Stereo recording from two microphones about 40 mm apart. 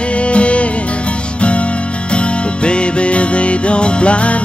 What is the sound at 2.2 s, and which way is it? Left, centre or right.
Music, left.